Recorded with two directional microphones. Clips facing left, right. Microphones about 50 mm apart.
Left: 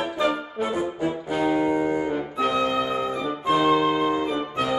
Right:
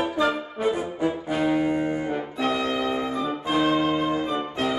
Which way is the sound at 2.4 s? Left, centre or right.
Centre.